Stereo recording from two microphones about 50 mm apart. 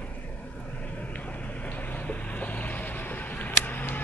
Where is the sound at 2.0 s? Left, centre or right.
Left.